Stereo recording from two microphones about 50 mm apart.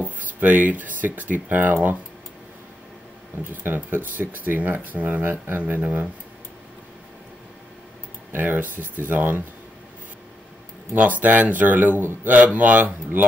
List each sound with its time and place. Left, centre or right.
0.0 s speech: right
3.4 s speech: right
4.2 s speech: right
8.3 s speech: right
11.0 s speech: right